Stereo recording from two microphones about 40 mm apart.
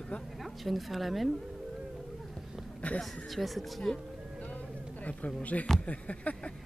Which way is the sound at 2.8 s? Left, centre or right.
Left.